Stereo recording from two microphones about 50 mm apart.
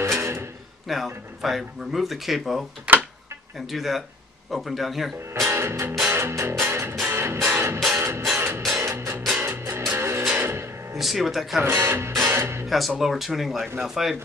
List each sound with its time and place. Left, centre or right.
0.0 s music: right
0.8 s speech: centre
2.9 s a sound: right
3.5 s speech: centre
5.5 s music: right
11.0 s speech: centre
11.6 s speech: right
12.3 s music: right
12.6 s speech: centre